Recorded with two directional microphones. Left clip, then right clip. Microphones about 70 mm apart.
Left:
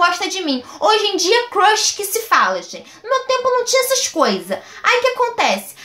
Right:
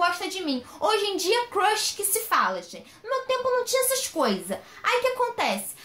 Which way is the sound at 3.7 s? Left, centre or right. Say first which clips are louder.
Left 9 dB; centre.